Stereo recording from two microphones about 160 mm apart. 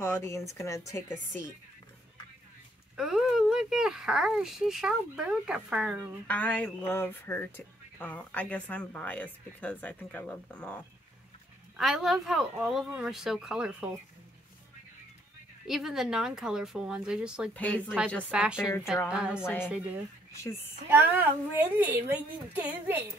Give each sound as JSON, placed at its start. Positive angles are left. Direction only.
{"t": 0.0, "sound": "speech", "side_deg": 15}
{"t": 3.0, "sound": "speech", "side_deg": -5}
{"t": 6.2, "sound": "speech", "side_deg": 10}
{"t": 11.8, "sound": "speech", "side_deg": 0}
{"t": 15.6, "sound": "speech", "side_deg": 0}
{"t": 17.6, "sound": "speech", "side_deg": 10}
{"t": 18.3, "sound": "a woman's voice", "side_deg": -5}
{"t": 19.4, "sound": "speech", "side_deg": 15}
{"t": 20.9, "sound": "a woman's voice", "side_deg": -10}